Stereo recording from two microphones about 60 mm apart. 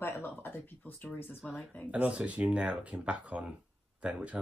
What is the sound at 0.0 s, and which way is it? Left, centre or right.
Speech, left.